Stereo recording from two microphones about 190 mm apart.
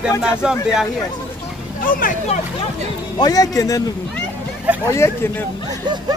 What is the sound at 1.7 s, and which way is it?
Speech, 45° left (ahead or behind).